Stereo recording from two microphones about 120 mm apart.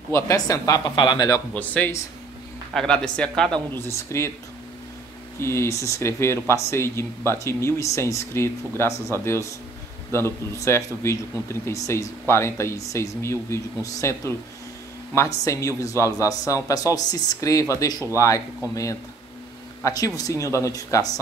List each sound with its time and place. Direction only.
0.1 s speech: 25° left (ahead or behind)
1.5 s speech: 10° left (ahead or behind)
3.7 s speech: 20° left (ahead or behind)
5.4 s speech: 20° left (ahead or behind)
19.8 s speech: 30° left (ahead or behind)